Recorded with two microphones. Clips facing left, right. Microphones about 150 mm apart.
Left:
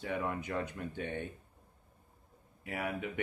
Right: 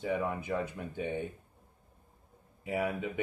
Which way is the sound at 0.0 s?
15° right (ahead or behind).